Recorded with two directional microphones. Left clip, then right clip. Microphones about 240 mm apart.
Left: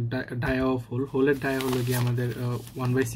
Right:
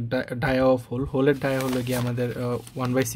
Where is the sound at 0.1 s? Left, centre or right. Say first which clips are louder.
Right 5 dB; right.